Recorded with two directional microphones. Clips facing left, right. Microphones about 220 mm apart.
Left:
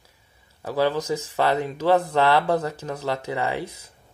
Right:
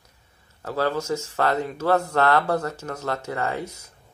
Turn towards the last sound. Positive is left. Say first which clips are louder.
# left 1 dB
turn(degrees=15)  # may be behind; listen again after turning